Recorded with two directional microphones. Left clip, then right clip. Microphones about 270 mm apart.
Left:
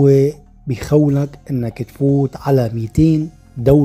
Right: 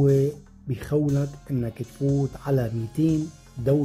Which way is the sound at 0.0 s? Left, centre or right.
Centre.